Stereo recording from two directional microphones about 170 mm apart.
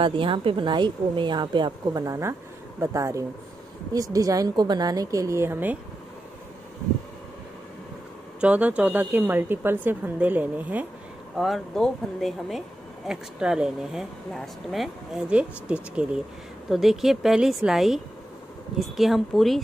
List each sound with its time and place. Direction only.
0.0 s a woman's voice: 30° right (ahead or behind); by 5.8 s 10° right (ahead or behind)
8.4 s speech: 10° right (ahead or behind)